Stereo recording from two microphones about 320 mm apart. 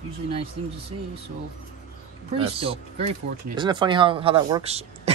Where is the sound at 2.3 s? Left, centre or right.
Centre.